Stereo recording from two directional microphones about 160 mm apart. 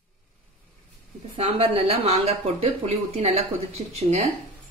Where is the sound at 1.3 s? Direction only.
35° right (ahead or behind).